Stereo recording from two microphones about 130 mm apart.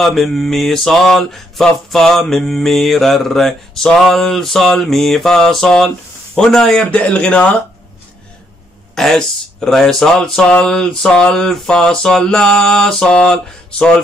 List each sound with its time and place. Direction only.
0.0 s mantra: centre (ahead or behind)
6.3 s a man's voice: 5° left (ahead or behind)
8.9 s mantra: 5° left (ahead or behind)